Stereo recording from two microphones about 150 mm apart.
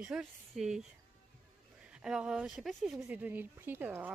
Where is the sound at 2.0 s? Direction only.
5° right (ahead or behind).